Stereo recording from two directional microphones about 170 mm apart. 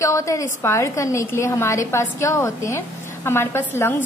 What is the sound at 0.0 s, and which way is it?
A woman's voice, 20° left (ahead or behind).